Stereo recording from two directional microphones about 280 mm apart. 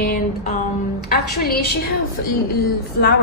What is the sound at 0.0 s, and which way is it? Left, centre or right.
Music, left.